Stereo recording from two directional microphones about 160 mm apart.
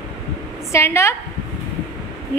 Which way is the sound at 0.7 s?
15° left (ahead or behind).